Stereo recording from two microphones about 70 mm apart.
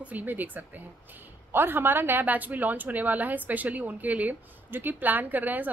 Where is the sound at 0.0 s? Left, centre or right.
Right.